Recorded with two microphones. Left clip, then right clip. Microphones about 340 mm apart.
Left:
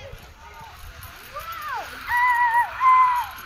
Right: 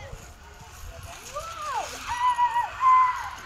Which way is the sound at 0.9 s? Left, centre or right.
Centre.